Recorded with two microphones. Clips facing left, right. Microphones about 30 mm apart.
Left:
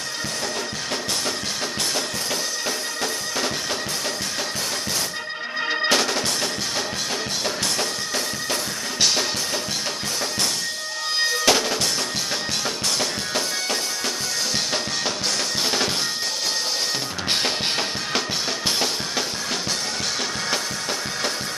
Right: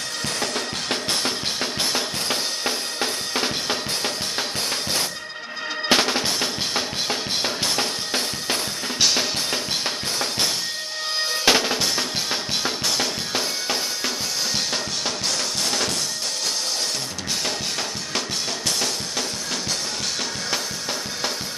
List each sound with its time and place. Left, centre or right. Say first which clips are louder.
2.6 s drum: right 1 dB; right
5.9 s drum: right 4 dB; centre
9.0 s drum kit: even; centre
11.4 s drum: right 3 dB; centre
12.6 s music: right 1 dB; centre